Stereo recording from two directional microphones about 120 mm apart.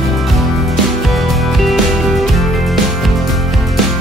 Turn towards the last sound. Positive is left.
turn(degrees=0)  # may be behind; listen again after turning